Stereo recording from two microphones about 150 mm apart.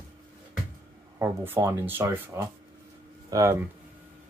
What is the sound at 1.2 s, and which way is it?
Speech, 15° right (ahead or behind).